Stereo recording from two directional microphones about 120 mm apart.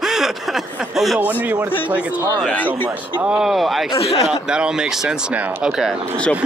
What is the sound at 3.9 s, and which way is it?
Speech, 55° left (ahead or behind).